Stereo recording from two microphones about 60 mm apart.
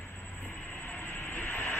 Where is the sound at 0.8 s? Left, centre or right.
Left.